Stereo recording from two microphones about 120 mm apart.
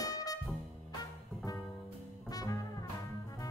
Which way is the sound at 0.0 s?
30° left (ahead or behind).